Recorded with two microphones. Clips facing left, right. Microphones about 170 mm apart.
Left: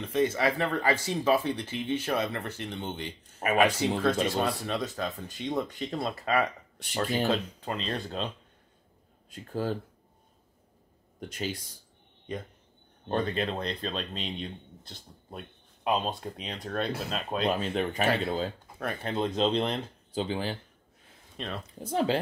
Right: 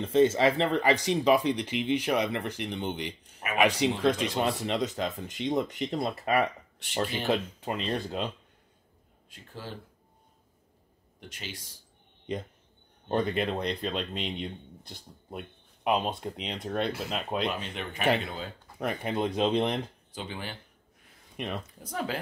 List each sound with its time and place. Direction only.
0.0 s speech: 25° right (ahead or behind)
9.5 s speech: 45° left (ahead or behind)
11.1 s speech: 40° left (ahead or behind)
13.1 s speech: 15° right (ahead or behind)
17.5 s speech: 35° left (ahead or behind)
18.8 s speech: 15° right (ahead or behind)
20.1 s speech: 30° left (ahead or behind)
21.4 s speech: 15° right (ahead or behind)
21.7 s speech: 25° left (ahead or behind)